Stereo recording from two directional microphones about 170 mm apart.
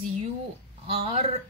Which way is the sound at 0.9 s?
35° right (ahead or behind).